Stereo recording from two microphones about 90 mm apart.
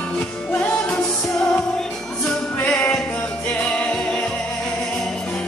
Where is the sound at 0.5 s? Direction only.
20° left (ahead or behind).